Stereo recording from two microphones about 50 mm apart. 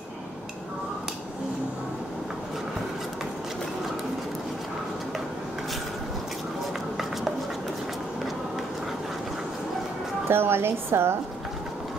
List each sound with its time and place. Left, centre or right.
10.2 s a woman's voice: right